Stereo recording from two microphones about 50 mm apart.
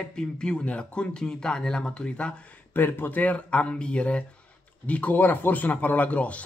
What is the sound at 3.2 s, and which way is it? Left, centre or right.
Speech, left.